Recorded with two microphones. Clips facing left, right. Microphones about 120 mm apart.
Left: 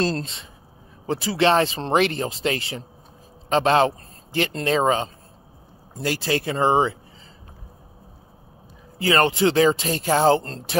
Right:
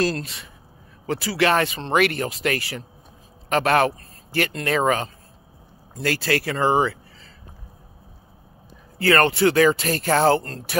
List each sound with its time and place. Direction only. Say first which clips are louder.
0.0 s speech: right 1 dB; 25° left (ahead or behind)
8.9 s speech: right 1 dB; 15° left (ahead or behind)